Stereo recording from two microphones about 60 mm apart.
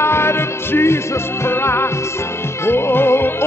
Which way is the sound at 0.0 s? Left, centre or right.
Left.